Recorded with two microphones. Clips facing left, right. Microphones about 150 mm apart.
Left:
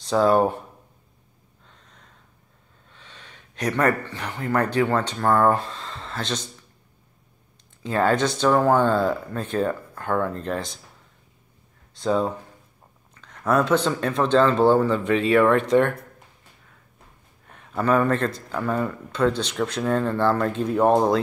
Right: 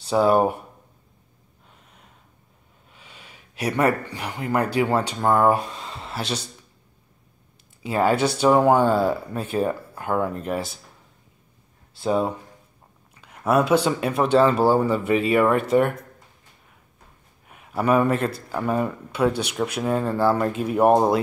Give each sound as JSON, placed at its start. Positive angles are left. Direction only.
{"t": 0.0, "sound": "speech", "side_deg": -10}
{"t": 1.7, "sound": "gasp", "side_deg": -10}
{"t": 2.9, "sound": "speech", "side_deg": -10}
{"t": 7.8, "sound": "speech", "side_deg": -10}
{"t": 12.0, "sound": "speech", "side_deg": -15}
{"t": 17.5, "sound": "speech", "side_deg": -10}